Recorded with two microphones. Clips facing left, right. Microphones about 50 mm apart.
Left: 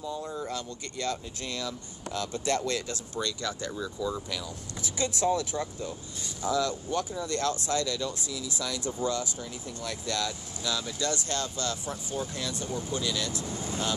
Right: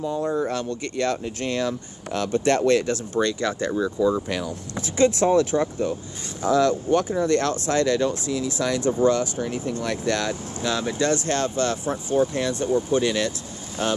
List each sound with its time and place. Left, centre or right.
0.0 s speech: right